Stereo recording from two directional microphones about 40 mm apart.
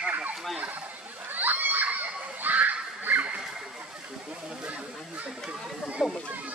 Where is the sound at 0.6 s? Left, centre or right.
Right.